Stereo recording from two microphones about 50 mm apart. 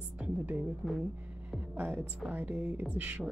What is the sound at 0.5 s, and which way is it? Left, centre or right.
Speech, right.